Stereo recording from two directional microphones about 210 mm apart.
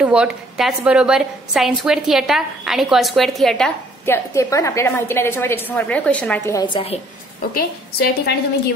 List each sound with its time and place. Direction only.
0.0 s a woman's voice: 5° right (ahead or behind); by 7.0 s 25° left (ahead or behind)
7.5 s a woman's voice: 50° left (ahead or behind)